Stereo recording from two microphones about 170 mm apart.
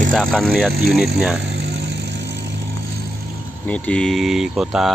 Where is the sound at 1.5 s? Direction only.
85° right.